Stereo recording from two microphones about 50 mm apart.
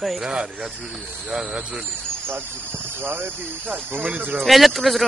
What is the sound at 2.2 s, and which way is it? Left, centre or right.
Speech, right.